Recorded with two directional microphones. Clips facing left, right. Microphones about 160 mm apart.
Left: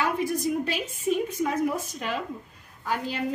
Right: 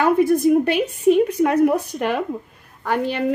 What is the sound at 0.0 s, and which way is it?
A woman's voice, 55° right (ahead or behind).